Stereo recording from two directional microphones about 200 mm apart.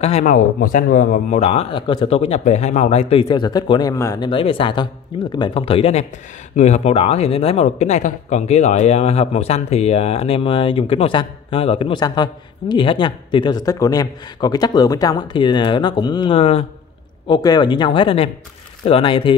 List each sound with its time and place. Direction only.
0.0 s speech: 35° left (ahead or behind)
3.3 s a woman's voice: 20° left (ahead or behind)
4.3 s a woman's voice: 25° left (ahead or behind)